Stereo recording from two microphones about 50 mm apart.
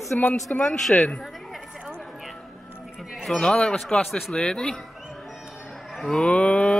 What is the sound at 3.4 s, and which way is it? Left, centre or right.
Speech, centre.